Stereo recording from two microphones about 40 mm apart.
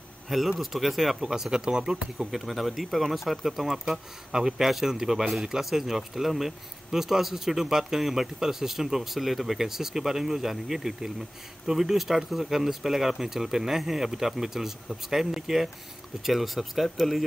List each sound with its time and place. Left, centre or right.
0.3 s speech: centre
1.3 s speech: centre
2.3 s speech: centre